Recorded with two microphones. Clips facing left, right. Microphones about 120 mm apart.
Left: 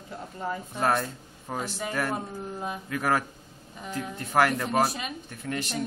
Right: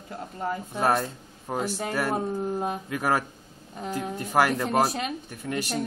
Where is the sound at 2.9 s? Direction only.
15° right (ahead or behind).